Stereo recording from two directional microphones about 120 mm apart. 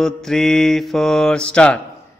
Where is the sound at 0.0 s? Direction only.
5° left (ahead or behind).